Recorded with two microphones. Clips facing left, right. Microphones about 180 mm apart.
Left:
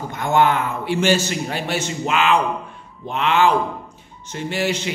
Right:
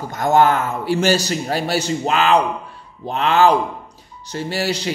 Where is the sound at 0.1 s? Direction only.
40° right (ahead or behind).